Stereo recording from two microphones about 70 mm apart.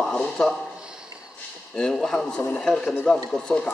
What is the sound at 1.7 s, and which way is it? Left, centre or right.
A man's voice, centre.